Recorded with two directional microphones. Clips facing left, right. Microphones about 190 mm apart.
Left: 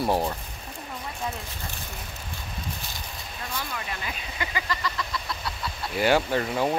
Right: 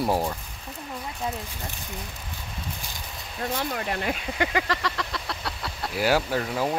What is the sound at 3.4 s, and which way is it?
Speech, 50° right (ahead or behind).